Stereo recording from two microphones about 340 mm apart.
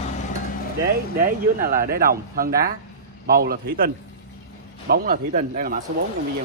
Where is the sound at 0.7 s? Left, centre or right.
Right.